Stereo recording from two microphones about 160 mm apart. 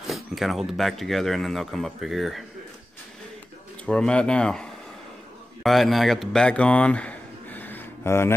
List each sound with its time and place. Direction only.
0.0 s speech: centre (ahead or behind)
3.8 s speech: 5° left (ahead or behind)